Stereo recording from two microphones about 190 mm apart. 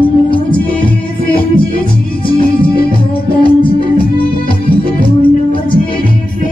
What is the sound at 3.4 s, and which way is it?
Music, 30° left (ahead or behind).